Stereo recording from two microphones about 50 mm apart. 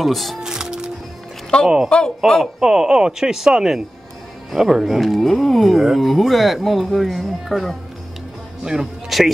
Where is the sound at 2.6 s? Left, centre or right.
Centre.